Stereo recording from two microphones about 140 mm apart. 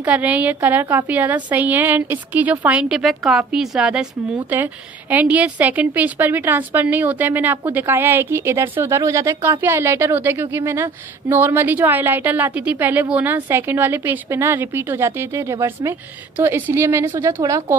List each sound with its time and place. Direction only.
0.0 s a woman's voice: 10° right (ahead or behind)